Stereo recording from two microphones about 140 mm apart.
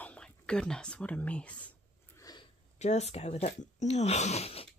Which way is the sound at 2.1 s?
25° left (ahead or behind).